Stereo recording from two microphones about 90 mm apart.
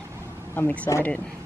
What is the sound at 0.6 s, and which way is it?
Speech, 15° left (ahead or behind).